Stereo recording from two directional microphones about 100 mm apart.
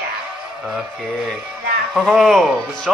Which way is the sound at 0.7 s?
Centre (ahead or behind).